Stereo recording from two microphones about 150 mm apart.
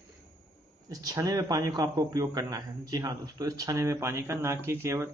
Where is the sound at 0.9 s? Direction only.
25° right (ahead or behind).